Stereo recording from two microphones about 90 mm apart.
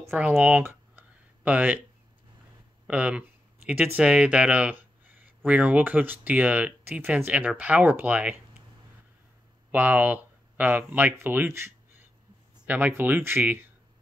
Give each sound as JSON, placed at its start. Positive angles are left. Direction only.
{"t": 0.1, "sound": "speech", "side_deg": -15}
{"t": 2.9, "sound": "speech", "side_deg": -15}
{"t": 9.7, "sound": "speech", "side_deg": -20}